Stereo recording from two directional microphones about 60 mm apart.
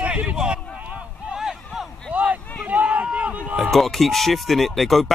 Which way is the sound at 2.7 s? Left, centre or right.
Right.